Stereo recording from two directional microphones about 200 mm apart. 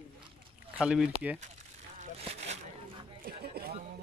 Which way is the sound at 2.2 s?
35° right (ahead or behind).